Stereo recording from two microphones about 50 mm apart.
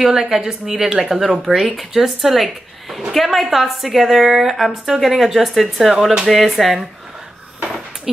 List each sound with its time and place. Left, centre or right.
0.0 s a woman's voice: centre